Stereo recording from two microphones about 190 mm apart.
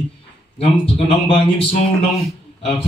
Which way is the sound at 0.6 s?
30° left (ahead or behind).